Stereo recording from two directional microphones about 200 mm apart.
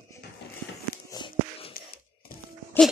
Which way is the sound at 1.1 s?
25° left (ahead or behind).